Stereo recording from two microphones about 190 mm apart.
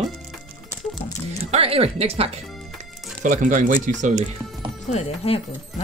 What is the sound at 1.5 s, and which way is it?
Speech, 30° right (ahead or behind).